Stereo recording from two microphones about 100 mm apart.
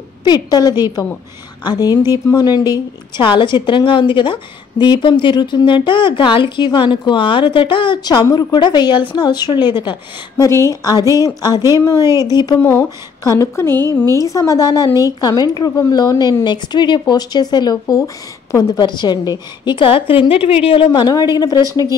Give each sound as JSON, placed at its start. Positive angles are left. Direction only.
{"t": 0.2, "sound": "a woman's voice", "side_deg": 45}
{"t": 10.3, "sound": "a woman's voice", "side_deg": 30}
{"t": 12.0, "sound": "speech", "side_deg": -30}
{"t": 12.3, "sound": "a woman's voice", "side_deg": 40}
{"t": 12.6, "sound": "a woman's voice", "side_deg": 30}